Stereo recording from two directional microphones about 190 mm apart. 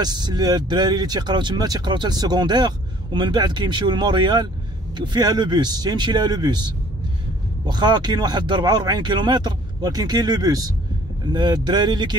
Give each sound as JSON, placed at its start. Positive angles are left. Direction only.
{"t": 0.0, "sound": "speech", "side_deg": -20}